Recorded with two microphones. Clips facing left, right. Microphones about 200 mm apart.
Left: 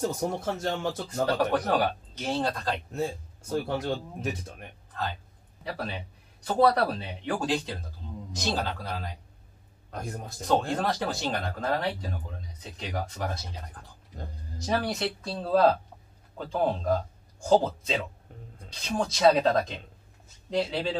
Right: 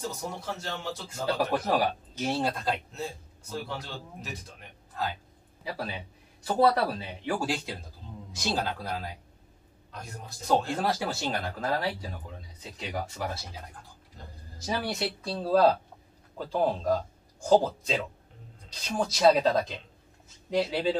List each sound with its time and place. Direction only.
0.0 s speech: 50° left (ahead or behind)
1.5 s speech: 5° right (ahead or behind)
2.9 s speech: 55° left (ahead or behind)
5.6 s speech: 5° right (ahead or behind)
9.8 s speech: 50° left (ahead or behind)
10.8 s speech: 5° right (ahead or behind)
14.7 s speech: centre (ahead or behind)